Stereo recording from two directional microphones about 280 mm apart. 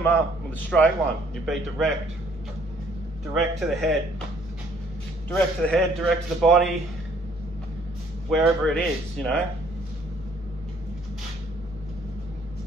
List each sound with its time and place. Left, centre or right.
0.7 s a man's voice: centre
3.3 s a man's voice: centre
5.3 s a man's voice: centre
8.3 s a man's voice: centre